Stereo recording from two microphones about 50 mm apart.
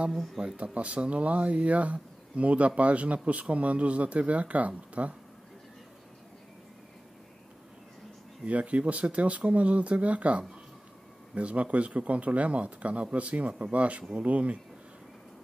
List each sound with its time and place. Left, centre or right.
0.1 s speech: centre
0.6 s speech: right
8.5 s speech: right